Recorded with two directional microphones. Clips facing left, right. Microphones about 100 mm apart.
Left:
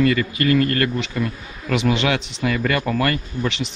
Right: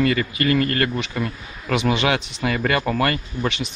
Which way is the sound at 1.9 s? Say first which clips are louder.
Even; 20° right (ahead or behind).